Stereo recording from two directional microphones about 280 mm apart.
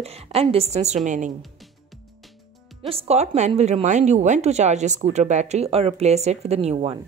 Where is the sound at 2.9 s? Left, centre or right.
Right.